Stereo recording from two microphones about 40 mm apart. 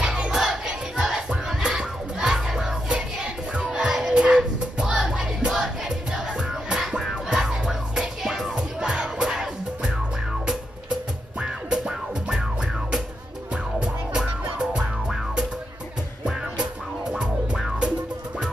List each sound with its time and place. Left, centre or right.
0.0 s battle cry: centre
0.7 s music: centre
8.5 s music: right
11.3 s music: right
13.7 s music: right